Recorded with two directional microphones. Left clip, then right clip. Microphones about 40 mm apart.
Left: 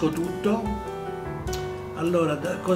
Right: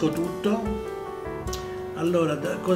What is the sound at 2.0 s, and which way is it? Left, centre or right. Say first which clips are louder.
Speech: even; centre.